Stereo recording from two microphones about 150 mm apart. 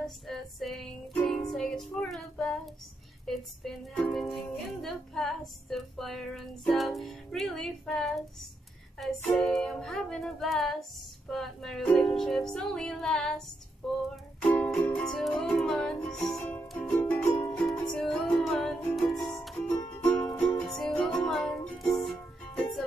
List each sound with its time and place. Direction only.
0.0 s music: centre (ahead or behind)
3.3 s speech: centre (ahead or behind)
9.4 s speech: 5° left (ahead or behind)
14.4 s music: 10° left (ahead or behind)
19.7 s music: 30° left (ahead or behind)
20.2 s music: 10° left (ahead or behind)